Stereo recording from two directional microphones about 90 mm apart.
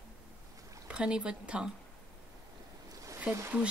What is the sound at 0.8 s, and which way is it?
Speech, 10° right (ahead or behind).